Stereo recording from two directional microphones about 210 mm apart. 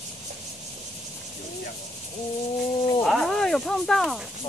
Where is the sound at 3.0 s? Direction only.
Centre (ahead or behind).